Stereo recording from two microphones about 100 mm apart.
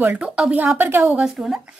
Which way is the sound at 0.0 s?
15° right (ahead or behind).